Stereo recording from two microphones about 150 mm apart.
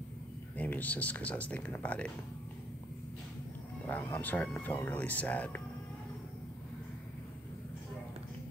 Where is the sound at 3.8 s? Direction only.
10° left (ahead or behind).